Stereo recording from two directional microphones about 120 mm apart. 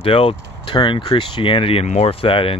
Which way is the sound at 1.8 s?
70° left (ahead or behind).